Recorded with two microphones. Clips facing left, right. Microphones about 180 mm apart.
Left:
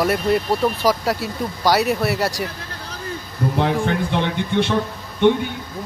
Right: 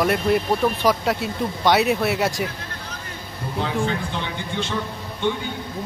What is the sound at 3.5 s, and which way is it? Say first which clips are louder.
A man's voice: left 3 dB; 60° left (ahead or behind).